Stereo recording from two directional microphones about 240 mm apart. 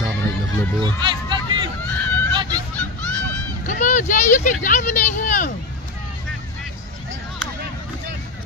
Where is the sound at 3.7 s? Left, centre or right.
Left.